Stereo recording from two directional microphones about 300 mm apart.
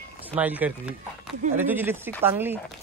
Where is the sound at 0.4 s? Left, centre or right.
Centre.